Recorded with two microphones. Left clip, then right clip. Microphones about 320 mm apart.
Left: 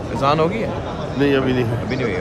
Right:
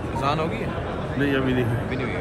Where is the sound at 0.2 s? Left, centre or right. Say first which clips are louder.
Left 8 dB; left.